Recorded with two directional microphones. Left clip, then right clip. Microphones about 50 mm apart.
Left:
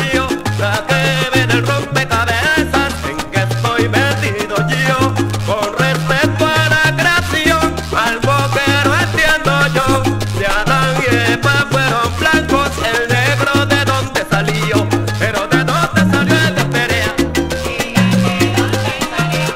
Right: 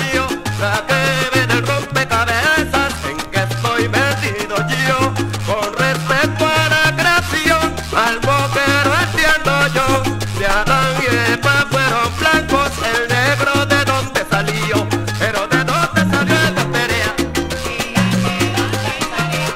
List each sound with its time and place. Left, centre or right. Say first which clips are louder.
0.8 s salsa music: left 1 dB; left
3.3 s music: left 1 dB; left
4.6 s salsa music: left 1 dB; left
6.6 s music: left 1 dB; left
10.8 s music: left 1 dB; centre
11.1 s music: left 1 dB; left
12.4 s salsa music: left 1 dB; left